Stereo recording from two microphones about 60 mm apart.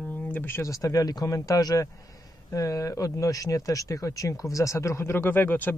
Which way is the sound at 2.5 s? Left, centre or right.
Left.